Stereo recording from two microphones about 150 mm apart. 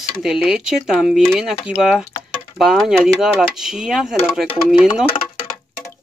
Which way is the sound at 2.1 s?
25° left (ahead or behind).